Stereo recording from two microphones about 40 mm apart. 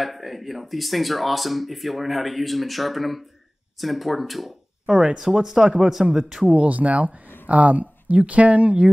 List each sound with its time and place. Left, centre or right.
0.0 s speech: centre
4.8 s speech: centre
6.4 s speech: right